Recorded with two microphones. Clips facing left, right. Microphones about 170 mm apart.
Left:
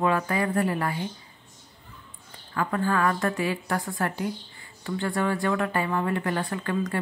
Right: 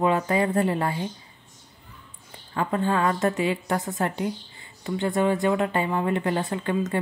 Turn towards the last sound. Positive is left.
turn(degrees=-20)  # may be behind; listen again after turning